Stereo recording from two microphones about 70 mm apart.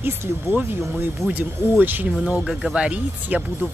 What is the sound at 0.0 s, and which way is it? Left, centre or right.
A woman's voice, right.